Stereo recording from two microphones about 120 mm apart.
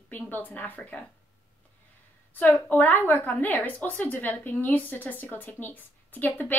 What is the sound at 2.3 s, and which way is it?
A woman's voice, 15° left (ahead or behind).